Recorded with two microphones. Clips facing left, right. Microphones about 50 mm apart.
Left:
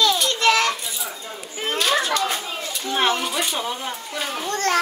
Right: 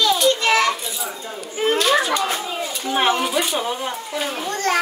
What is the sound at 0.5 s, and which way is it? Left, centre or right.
Children playing, centre.